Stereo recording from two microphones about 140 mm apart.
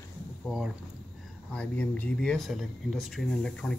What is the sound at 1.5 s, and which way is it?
Speech, 10° left (ahead or behind).